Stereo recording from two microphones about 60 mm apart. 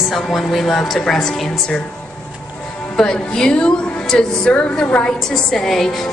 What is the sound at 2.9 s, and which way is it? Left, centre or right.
A woman's voice, centre.